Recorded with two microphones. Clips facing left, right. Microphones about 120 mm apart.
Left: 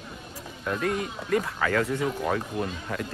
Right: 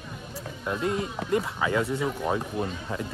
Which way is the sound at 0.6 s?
25° right (ahead or behind).